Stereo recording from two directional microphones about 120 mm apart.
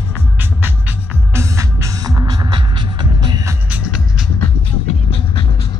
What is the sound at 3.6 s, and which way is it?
Music, 10° right (ahead or behind).